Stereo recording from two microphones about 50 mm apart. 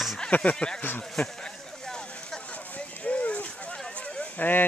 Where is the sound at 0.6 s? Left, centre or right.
Left.